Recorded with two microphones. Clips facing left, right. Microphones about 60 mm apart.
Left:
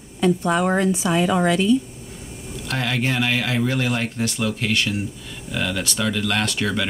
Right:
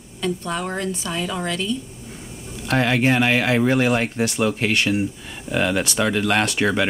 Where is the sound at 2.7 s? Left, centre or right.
Centre.